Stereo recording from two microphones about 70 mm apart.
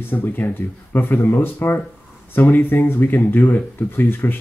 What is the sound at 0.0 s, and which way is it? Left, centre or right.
Speech, left.